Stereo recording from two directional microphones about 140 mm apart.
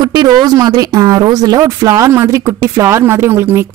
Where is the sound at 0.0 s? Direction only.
30° right (ahead or behind).